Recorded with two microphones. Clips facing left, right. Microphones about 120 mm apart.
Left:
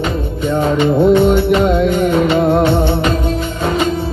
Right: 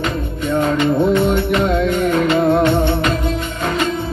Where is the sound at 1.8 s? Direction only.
25° left (ahead or behind).